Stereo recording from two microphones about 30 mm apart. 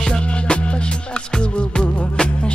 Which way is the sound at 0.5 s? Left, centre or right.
Left.